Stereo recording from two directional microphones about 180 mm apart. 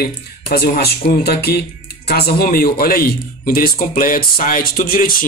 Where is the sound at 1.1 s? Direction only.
60° left (ahead or behind).